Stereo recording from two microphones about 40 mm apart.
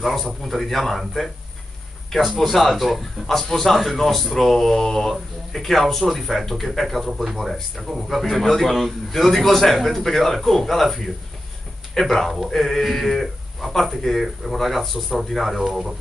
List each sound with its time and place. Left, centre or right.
0.0 s a man's voice: centre
7.1 s speech: centre